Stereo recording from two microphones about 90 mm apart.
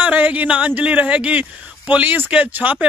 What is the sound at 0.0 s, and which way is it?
Speech, 15° right (ahead or behind).